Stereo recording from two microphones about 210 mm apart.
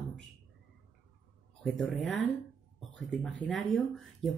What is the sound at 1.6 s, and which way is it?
Speech, centre (ahead or behind).